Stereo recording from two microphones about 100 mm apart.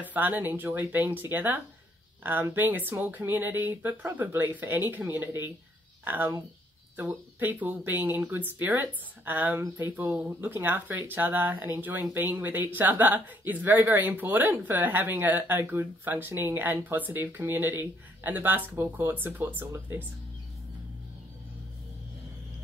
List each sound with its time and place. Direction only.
0.0 s speech: 15° right (ahead or behind)